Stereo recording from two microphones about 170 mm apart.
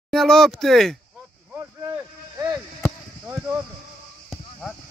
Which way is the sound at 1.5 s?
15° right (ahead or behind).